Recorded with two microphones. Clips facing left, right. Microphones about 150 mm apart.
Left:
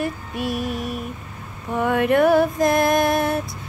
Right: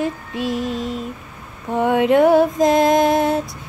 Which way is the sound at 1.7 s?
20° right (ahead or behind).